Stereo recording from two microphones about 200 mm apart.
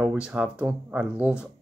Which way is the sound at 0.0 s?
10° right (ahead or behind).